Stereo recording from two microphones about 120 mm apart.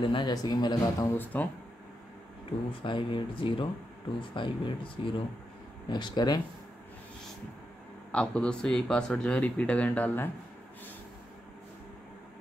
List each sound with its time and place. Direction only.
0.0 s speech: 40° left (ahead or behind)
1.0 s speech: 15° left (ahead or behind)
2.7 s speech: 45° left (ahead or behind)
8.1 s speech: 10° left (ahead or behind)